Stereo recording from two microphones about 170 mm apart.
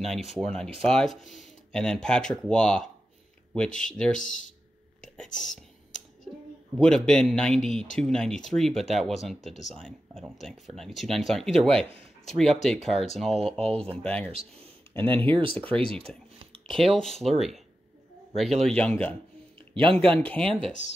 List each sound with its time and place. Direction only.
0.0 s speech: centre (ahead or behind)
5.4 s whispering: 45° left (ahead or behind)
6.8 s speech: 5° left (ahead or behind)
14.3 s speech: 35° right (ahead or behind)
15.0 s speech: 10° left (ahead or behind)
15.2 s speech: 30° right (ahead or behind)
15.5 s speech: 5° left (ahead or behind)
15.8 s speech: 35° right (ahead or behind)
16.9 s speech: centre (ahead or behind)
19.7 s speech: 30° right (ahead or behind)
20.2 s speech: 10° left (ahead or behind)